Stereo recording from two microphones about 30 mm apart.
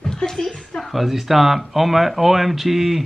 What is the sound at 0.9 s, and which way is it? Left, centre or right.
Speech, centre.